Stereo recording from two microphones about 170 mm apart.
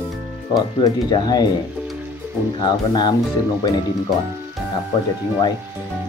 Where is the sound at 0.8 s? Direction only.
25° left (ahead or behind).